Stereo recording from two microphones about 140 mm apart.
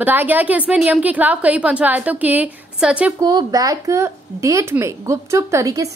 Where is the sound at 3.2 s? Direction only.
25° right (ahead or behind).